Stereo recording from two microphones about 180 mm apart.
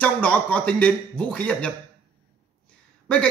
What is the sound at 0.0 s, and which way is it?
A man's voice, 5° left (ahead or behind).